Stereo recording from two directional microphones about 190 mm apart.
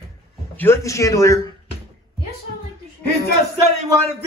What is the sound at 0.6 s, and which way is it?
Speech, 15° left (ahead or behind).